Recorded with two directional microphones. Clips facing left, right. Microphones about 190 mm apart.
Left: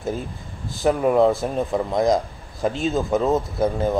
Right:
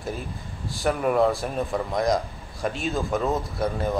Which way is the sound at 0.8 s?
25° left (ahead or behind).